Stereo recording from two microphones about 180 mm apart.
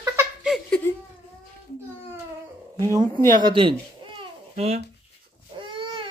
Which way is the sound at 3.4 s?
25° right (ahead or behind).